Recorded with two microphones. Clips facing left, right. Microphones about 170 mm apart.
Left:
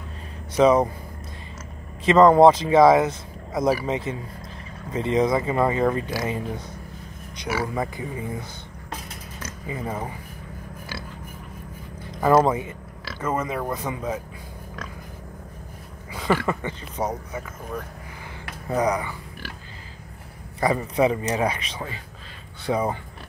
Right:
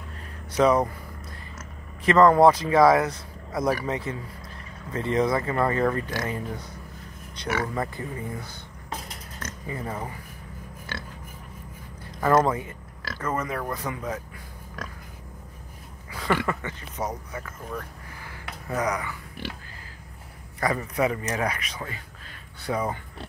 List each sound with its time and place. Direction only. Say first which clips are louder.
0.5 s speech: left 3 dB; 20° left (ahead or behind)
2.0 s speech: left 3 dB; 20° left (ahead or behind)
12.2 s speech: left 3 dB; 15° left (ahead or behind)
16.1 s a sound: left 3 dB; 20° left (ahead or behind)
16.4 s speech: left 3 dB; 30° left (ahead or behind)
18.8 s speech: left 5 dB; 30° left (ahead or behind)
20.6 s speech: left 4 dB; 25° left (ahead or behind)